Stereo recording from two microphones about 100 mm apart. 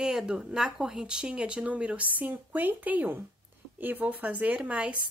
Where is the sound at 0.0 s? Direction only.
5° right (ahead or behind).